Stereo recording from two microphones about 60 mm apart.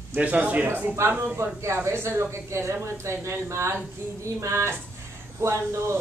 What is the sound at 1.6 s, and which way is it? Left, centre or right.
Speech, right.